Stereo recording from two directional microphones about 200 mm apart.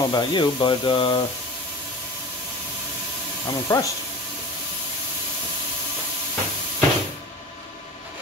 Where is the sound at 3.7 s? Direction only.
20° left (ahead or behind).